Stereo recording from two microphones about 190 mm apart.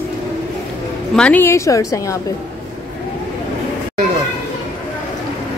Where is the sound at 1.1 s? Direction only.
5° left (ahead or behind).